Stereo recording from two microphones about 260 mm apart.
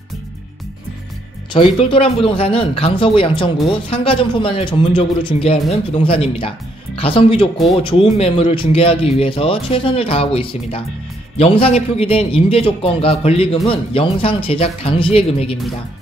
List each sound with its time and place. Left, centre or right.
1.5 s a man's voice: centre